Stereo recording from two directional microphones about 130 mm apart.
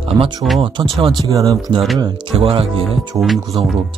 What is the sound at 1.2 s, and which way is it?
Speech, 25° right (ahead or behind).